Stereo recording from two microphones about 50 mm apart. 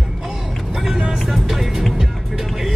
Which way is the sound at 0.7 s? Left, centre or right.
Centre.